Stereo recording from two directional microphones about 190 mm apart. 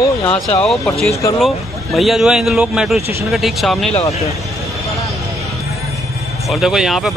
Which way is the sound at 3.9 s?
35° left (ahead or behind).